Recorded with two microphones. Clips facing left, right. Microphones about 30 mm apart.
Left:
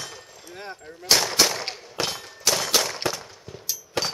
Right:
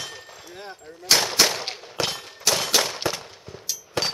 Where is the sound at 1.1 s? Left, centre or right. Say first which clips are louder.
Right 1 dB; centre.